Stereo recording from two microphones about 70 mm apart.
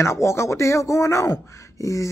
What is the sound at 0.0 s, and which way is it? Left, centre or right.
Speech, left.